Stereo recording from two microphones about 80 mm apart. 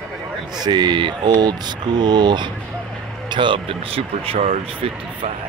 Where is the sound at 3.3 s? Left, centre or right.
Right.